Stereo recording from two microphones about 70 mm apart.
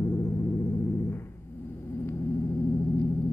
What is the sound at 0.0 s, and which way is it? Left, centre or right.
Music, left.